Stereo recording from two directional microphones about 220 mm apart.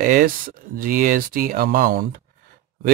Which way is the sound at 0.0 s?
40° right (ahead or behind).